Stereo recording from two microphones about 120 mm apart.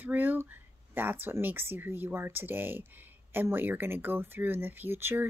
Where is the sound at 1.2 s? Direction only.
15° right (ahead or behind).